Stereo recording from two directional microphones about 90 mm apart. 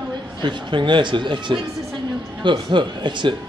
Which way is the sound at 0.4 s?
60° right (ahead or behind).